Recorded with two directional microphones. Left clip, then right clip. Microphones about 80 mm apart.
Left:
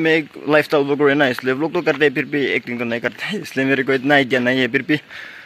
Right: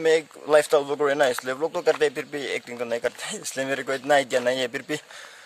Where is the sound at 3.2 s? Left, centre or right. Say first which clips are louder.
Left 8 dB; right.